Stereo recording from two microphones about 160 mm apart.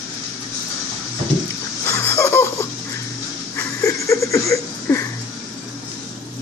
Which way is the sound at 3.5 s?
15° left (ahead or behind).